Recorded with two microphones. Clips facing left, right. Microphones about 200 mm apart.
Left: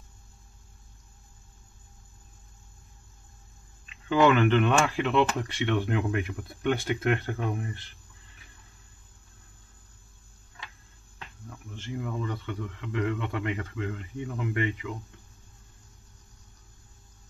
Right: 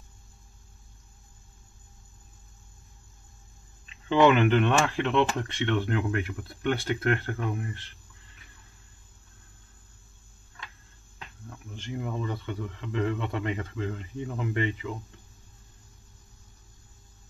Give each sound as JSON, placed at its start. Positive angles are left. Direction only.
{"t": 4.3, "sound": "speech", "side_deg": -15}
{"t": 4.6, "sound": "speech", "side_deg": 0}
{"t": 5.6, "sound": "speech", "side_deg": 15}
{"t": 11.7, "sound": "speech", "side_deg": -15}
{"t": 12.1, "sound": "speech", "side_deg": -30}